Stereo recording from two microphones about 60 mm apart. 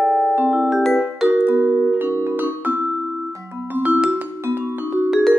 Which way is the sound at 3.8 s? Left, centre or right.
Right.